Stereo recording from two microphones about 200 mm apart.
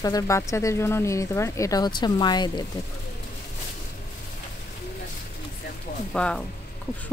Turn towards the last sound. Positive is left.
turn(degrees=5)  # may be behind; listen again after turning